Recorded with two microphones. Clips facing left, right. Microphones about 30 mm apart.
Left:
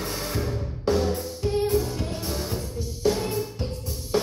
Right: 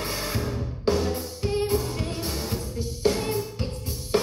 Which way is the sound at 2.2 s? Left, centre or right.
Right.